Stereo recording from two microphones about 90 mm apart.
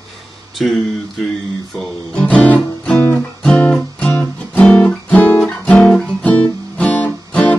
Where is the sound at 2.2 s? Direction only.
15° left (ahead or behind).